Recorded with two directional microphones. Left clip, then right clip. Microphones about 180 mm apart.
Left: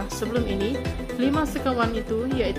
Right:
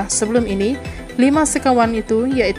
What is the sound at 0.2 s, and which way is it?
Speech, 40° right (ahead or behind).